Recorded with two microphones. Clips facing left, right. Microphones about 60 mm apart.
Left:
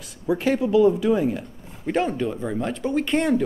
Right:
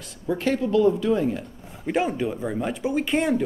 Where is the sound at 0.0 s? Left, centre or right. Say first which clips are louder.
Left 2 dB; centre.